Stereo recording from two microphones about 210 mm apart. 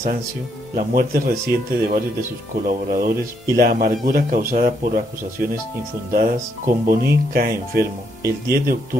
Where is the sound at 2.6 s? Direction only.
40° right (ahead or behind).